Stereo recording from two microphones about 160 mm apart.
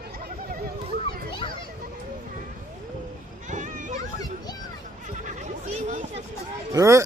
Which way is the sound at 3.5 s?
50° right (ahead or behind).